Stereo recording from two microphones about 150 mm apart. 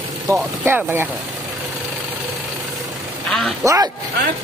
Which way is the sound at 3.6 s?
20° right (ahead or behind).